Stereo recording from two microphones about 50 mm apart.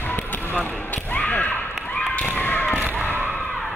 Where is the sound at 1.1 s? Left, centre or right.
Left.